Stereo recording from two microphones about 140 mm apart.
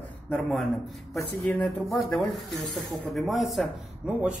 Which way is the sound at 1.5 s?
Centre (ahead or behind).